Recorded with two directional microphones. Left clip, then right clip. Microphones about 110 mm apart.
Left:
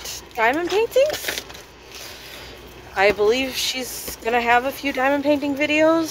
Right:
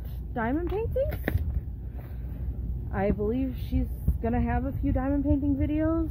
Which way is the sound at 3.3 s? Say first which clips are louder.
Left 11 dB; 5° left (ahead or behind).